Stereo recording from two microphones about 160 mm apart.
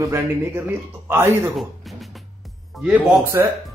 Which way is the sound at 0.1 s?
15° right (ahead or behind).